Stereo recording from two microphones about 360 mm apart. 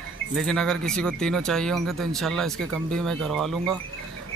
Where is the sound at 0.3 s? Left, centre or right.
Centre.